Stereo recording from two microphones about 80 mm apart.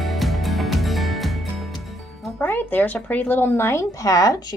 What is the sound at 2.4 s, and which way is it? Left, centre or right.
Speech, left.